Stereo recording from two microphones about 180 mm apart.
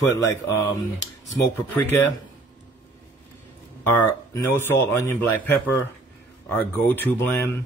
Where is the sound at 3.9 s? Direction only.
10° left (ahead or behind).